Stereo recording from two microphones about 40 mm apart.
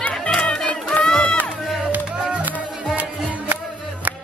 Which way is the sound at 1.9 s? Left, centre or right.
Right.